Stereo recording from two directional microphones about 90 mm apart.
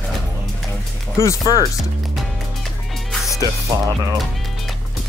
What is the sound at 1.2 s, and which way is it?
Speech, 40° left (ahead or behind).